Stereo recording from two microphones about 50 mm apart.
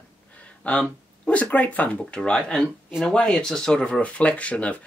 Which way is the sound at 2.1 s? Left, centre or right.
Centre.